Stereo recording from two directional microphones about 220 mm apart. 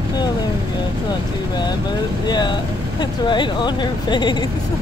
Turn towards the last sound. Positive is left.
turn(degrees=20)  # may be behind; listen again after turning